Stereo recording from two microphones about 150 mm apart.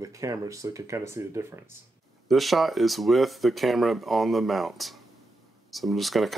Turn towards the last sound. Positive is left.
turn(degrees=0)  # may be behind; listen again after turning